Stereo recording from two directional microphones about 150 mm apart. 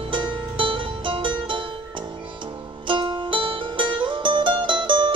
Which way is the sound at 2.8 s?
35° right (ahead or behind).